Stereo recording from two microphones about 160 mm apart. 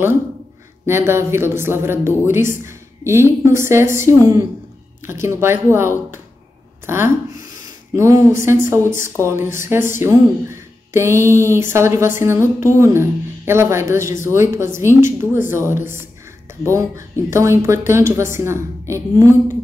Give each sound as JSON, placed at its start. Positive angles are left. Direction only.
{"t": 0.8, "sound": "a woman's voice", "side_deg": -15}